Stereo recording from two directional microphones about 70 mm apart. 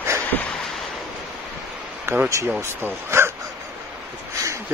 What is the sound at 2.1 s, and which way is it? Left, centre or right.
Speech, right.